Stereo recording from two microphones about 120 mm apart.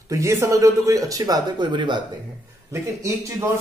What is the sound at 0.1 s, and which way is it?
Speech, 25° right (ahead or behind).